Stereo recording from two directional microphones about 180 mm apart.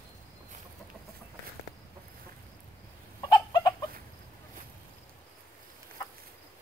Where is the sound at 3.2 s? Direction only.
20° left (ahead or behind).